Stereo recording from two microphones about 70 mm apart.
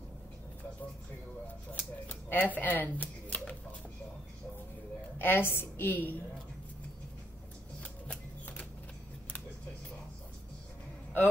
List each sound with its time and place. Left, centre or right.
1.7 s a sound: left
5.2 s a woman's voice: left
7.8 s music: centre